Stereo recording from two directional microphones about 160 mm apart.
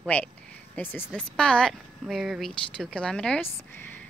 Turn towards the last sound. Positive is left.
turn(degrees=5)  # may be behind; listen again after turning